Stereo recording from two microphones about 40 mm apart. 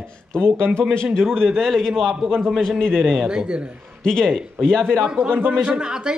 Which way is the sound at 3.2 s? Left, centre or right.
Right.